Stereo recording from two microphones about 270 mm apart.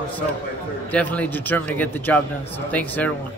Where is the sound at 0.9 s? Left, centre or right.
Centre.